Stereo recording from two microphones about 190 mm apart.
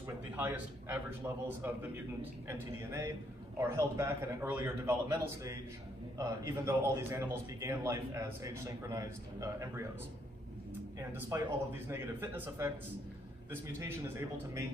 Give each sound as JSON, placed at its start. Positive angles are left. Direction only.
{"t": 0.4, "sound": "a man's voice", "side_deg": -10}
{"t": 2.4, "sound": "a man's voice", "side_deg": -15}
{"t": 11.0, "sound": "a man's voice", "side_deg": -15}
{"t": 13.7, "sound": "a man's voice", "side_deg": -15}